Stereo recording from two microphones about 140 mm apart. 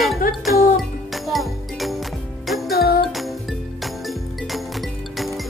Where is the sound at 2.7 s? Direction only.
90° left.